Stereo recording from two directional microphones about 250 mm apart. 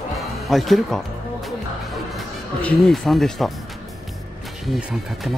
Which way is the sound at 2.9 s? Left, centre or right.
Centre.